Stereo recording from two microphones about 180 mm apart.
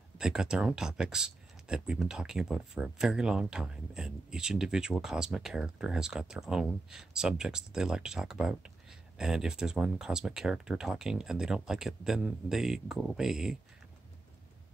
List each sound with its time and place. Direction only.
0.2 s speech: 5° right (ahead or behind)